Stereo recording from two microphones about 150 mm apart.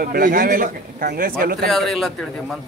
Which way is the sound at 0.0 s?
75° right (ahead or behind).